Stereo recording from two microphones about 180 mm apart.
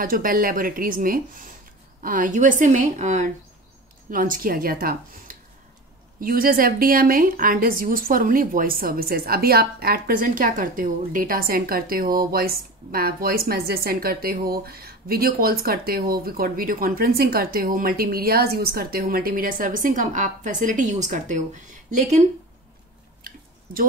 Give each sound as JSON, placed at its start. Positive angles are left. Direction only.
{"t": 0.0, "sound": "speech", "side_deg": -50}
{"t": 23.2, "sound": "chewing", "side_deg": -50}